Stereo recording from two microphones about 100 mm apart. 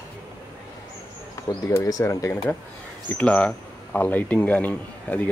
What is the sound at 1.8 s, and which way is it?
Speech, 35° left (ahead or behind).